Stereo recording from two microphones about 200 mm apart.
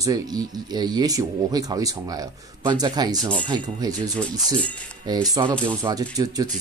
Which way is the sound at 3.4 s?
20° right (ahead or behind).